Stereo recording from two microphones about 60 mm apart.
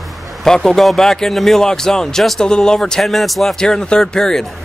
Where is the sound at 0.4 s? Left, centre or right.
Centre.